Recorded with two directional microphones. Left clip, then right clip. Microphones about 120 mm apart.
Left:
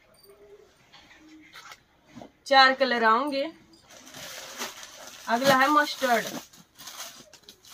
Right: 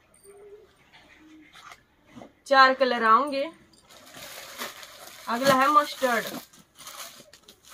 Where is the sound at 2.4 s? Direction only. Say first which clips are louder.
Right 1 dB; centre (ahead or behind).